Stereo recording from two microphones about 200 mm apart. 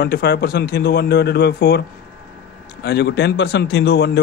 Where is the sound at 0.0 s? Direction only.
50° left (ahead or behind).